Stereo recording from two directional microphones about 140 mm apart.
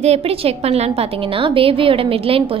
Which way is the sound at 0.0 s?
45° right (ahead or behind).